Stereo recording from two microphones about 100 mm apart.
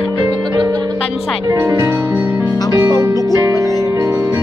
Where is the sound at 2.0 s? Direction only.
20° right (ahead or behind).